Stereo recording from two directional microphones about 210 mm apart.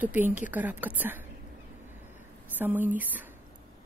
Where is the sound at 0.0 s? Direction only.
10° right (ahead or behind).